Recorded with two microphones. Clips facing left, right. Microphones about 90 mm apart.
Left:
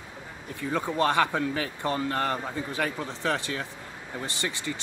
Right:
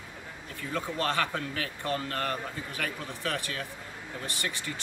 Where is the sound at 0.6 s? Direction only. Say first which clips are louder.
Left 6 dB; 20° left (ahead or behind).